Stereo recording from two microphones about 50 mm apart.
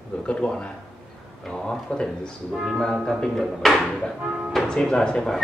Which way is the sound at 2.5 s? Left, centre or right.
Centre.